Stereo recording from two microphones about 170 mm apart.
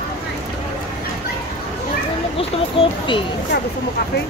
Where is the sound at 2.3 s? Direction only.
30° left (ahead or behind).